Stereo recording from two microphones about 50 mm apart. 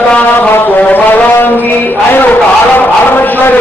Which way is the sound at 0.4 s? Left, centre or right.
Left.